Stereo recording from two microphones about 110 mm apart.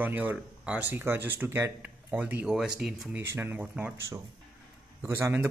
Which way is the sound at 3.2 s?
20° right (ahead or behind).